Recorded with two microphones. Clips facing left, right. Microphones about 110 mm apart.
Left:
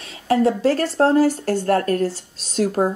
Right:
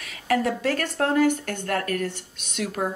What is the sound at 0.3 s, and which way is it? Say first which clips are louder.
A woman's voice: left 6 dB; 30° left (ahead or behind).